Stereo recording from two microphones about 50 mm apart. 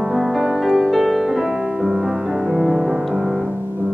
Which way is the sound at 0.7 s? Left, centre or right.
Centre.